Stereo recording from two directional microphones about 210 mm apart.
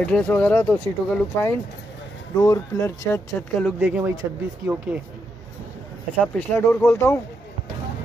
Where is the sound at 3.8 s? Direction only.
10° right (ahead or behind).